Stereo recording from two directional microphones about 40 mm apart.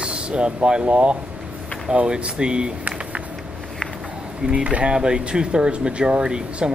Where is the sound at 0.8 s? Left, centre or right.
Right.